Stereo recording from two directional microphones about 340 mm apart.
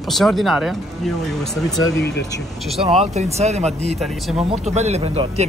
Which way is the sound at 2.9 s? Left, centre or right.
Centre.